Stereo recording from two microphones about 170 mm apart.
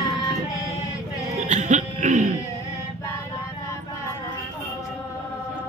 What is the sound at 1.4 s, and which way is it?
Music, 45° right (ahead or behind).